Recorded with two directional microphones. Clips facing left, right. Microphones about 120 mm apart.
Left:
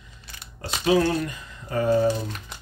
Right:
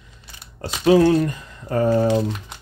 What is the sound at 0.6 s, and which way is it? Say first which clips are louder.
Speech: right 6 dB; 40° right (ahead or behind).